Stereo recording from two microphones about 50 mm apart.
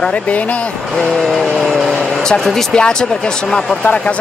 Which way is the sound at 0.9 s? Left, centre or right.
Centre.